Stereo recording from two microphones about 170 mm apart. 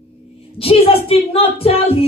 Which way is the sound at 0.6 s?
35° left (ahead or behind).